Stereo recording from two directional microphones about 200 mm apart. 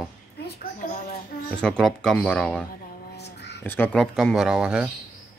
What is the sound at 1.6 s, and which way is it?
Speech, 5° left (ahead or behind).